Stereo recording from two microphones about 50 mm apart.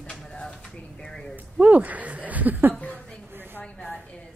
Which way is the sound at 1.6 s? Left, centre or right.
Right.